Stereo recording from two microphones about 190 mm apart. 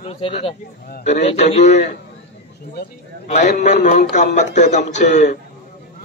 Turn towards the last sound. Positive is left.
turn(degrees=40)  # may be behind; listen again after turning